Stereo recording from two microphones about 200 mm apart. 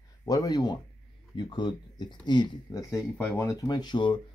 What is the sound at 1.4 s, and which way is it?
Speech, 25° left (ahead or behind).